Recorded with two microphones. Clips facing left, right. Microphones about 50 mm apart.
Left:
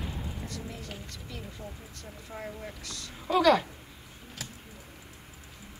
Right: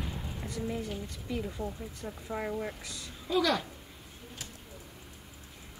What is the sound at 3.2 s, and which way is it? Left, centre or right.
Speech, left.